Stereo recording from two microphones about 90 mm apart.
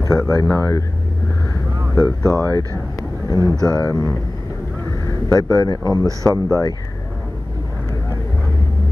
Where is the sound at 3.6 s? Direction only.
45° left (ahead or behind).